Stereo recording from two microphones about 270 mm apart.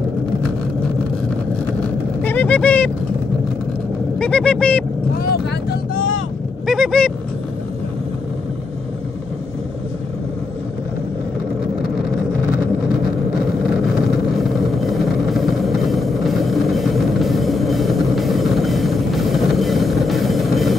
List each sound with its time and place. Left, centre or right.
2.2 s vehicle: centre
4.2 s speech: centre
5.3 s vehicle: left
6.6 s a sound: centre
14.8 s music: centre